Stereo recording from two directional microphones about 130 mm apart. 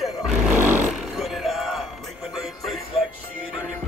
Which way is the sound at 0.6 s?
15° right (ahead or behind).